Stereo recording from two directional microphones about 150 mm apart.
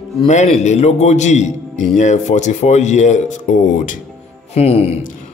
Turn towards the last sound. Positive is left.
turn(degrees=45)  # may be behind; listen again after turning